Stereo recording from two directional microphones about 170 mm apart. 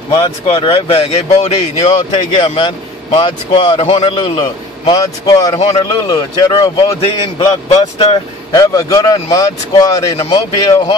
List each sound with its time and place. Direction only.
0.1 s a man's voice: 35° left (ahead or behind)
8.5 s a man's voice: 20° left (ahead or behind)